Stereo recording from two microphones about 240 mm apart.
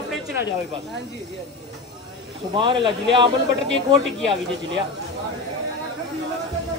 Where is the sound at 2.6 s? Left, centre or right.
Right.